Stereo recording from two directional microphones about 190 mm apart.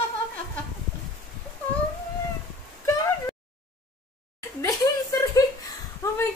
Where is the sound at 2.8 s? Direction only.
15° left (ahead or behind).